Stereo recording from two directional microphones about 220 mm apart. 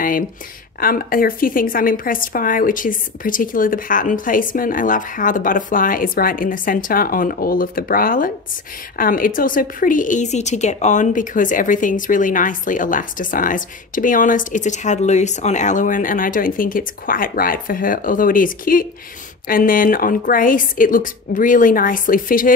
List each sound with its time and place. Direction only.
0.7 s a woman's voice: 40° left (ahead or behind)